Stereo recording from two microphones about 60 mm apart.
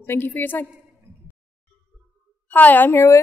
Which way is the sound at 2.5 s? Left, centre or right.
Left.